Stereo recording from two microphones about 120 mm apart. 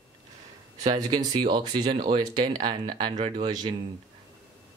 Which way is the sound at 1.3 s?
40° right (ahead or behind).